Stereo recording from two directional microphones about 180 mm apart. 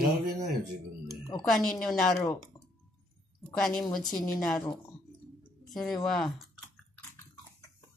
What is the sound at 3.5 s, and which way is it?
A woman's voice, 5° left (ahead or behind).